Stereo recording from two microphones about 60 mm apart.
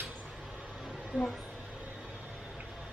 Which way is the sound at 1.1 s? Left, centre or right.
Right.